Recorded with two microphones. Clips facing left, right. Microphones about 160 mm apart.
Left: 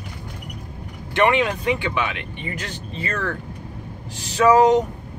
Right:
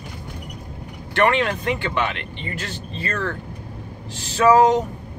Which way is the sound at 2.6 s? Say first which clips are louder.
Even; 15° left (ahead or behind).